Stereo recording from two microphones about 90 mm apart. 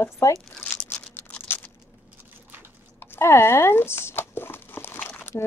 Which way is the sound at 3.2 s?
30° left (ahead or behind).